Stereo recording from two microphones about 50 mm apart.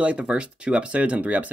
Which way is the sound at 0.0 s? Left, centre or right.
Right.